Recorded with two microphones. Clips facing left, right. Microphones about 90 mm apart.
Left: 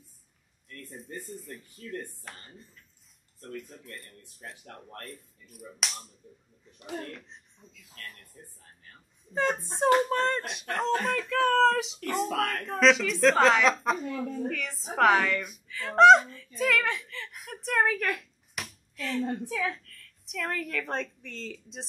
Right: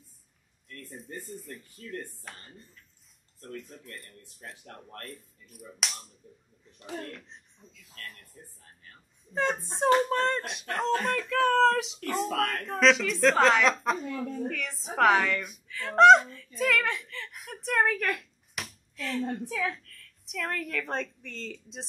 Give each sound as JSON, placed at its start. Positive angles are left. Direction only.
{"t": 0.7, "sound": "a woman's voice", "side_deg": 0}
{"t": 7.1, "sound": "a woman's voice", "side_deg": 0}
{"t": 9.3, "sound": "a woman's voice", "side_deg": 0}